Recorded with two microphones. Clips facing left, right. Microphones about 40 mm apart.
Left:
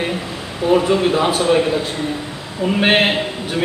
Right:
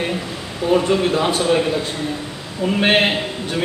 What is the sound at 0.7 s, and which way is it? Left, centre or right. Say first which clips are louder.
A man's voice: left 2 dB; centre.